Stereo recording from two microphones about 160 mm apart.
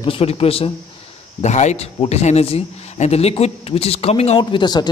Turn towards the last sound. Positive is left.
turn(degrees=25)  # may be behind; listen again after turning